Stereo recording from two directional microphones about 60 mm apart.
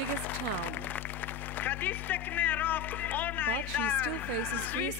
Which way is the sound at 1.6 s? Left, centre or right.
Left.